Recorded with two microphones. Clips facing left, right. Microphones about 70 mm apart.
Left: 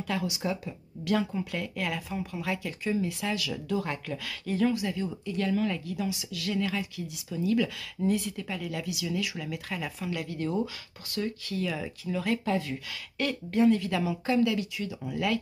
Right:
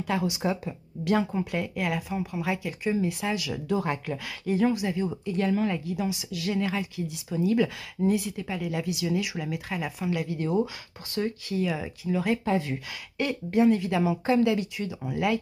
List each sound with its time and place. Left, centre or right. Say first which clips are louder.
0.0 s speech: right 4 dB; right
8.0 s speech: right 3 dB; centre
8.8 s speech: right 4 dB; right
11.1 s speech: right 3 dB; right
11.5 s speech: right 4 dB; centre